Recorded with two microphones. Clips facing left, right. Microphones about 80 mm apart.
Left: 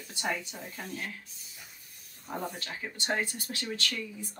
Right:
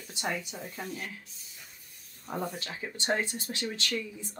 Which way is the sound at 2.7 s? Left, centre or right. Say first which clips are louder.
Right 2 dB; right.